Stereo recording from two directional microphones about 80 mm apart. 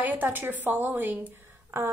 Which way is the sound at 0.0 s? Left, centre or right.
Right.